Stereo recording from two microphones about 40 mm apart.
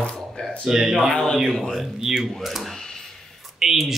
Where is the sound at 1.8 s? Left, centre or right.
Centre.